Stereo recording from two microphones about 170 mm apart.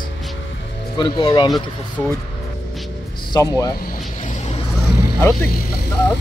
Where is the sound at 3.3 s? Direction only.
25° left (ahead or behind).